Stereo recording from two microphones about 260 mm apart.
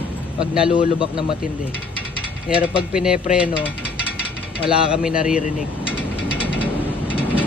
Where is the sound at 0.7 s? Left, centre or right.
Centre.